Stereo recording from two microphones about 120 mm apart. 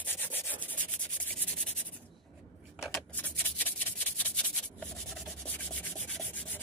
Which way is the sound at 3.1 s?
15° left (ahead or behind).